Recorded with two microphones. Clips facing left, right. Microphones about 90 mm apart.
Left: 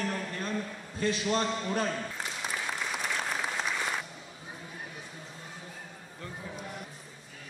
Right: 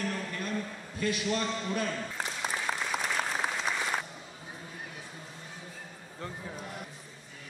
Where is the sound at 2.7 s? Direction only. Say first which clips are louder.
Right 4 dB; 45° right (ahead or behind).